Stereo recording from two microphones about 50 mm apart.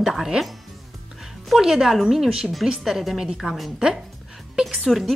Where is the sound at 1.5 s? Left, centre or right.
Centre.